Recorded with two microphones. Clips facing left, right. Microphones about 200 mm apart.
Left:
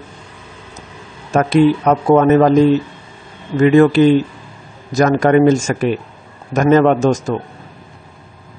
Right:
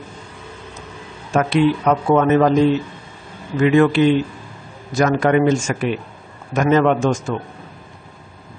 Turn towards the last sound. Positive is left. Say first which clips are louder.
# left 4 dB
turn(degrees=40)  # may be behind; listen again after turning